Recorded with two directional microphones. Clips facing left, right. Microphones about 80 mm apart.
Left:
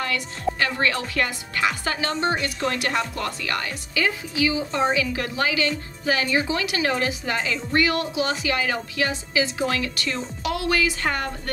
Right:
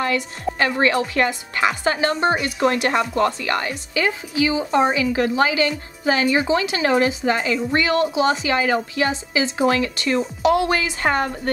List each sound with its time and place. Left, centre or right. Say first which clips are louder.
0.6 s a woman's voice: right 7 dB; right
2.7 s a woman's voice: right 5 dB; right